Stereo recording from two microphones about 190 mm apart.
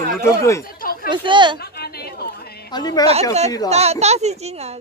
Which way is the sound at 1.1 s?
25° right (ahead or behind).